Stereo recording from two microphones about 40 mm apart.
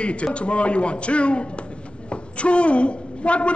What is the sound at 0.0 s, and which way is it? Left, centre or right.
A man's voice, left.